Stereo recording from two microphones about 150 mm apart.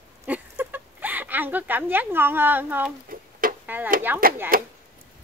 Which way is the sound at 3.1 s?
70° right (ahead or behind).